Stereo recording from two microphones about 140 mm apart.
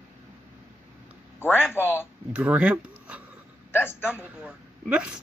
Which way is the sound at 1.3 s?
15° left (ahead or behind).